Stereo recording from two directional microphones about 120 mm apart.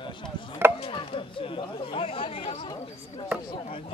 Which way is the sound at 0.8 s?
50° left (ahead or behind).